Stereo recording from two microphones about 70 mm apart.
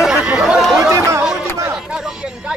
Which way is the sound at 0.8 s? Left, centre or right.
Right.